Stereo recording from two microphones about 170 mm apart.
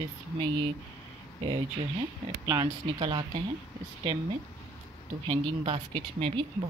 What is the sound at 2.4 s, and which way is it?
Speech, 20° right (ahead or behind).